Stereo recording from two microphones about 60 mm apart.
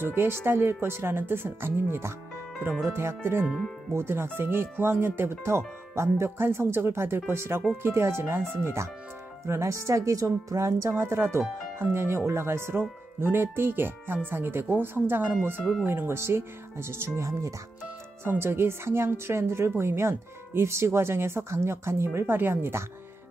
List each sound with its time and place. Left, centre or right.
0.0 s speech: right
9.5 s speech: right
18.2 s speech: right